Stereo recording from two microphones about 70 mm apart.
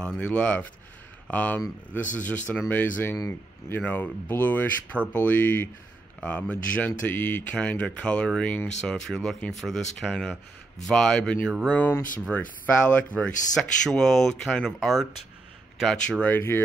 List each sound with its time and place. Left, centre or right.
0.0 s speech: centre
13.6 s speech: centre
16.1 s speech: centre
16.3 s speech: left